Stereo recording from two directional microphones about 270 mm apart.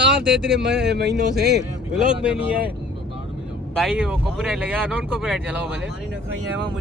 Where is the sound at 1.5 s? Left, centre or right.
Centre.